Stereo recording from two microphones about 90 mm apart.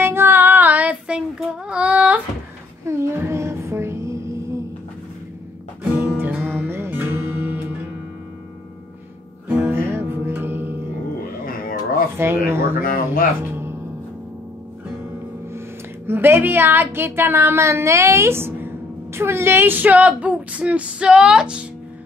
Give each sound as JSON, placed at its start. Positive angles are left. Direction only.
{"t": 0.0, "sound": "child singing", "side_deg": -25}
{"t": 2.8, "sound": "child singing", "side_deg": -30}
{"t": 5.9, "sound": "music", "side_deg": -20}
{"t": 9.5, "sound": "music", "side_deg": -15}
{"t": 12.2, "sound": "a woman's voice", "side_deg": -30}
{"t": 16.1, "sound": "a woman's voice", "side_deg": -25}